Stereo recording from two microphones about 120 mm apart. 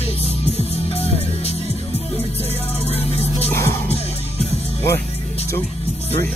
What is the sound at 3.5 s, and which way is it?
Music, 25° left (ahead or behind).